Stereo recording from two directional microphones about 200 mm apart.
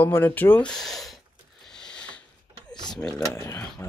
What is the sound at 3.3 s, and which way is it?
Speech, 15° left (ahead or behind).